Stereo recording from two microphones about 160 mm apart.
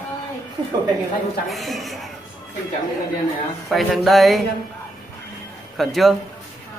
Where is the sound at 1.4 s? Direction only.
Centre (ahead or behind).